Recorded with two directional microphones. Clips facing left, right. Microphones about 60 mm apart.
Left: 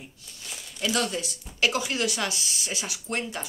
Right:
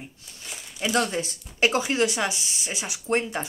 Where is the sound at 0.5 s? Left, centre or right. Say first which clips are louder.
Right 1 dB; centre.